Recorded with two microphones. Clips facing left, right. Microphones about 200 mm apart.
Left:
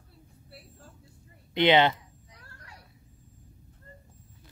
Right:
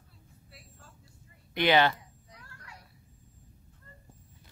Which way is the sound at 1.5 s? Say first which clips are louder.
Left 3 dB; 20° left (ahead or behind).